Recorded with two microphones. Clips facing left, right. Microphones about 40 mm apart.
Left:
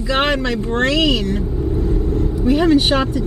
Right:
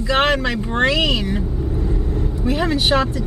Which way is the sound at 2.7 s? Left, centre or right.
Centre.